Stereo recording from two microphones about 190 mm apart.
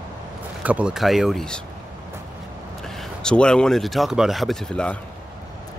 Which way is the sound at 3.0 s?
5° left (ahead or behind).